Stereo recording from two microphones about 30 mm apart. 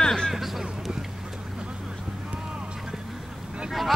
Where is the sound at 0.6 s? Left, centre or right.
Right.